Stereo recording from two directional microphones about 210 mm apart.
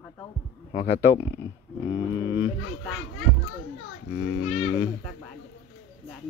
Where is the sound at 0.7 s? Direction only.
45° left (ahead or behind).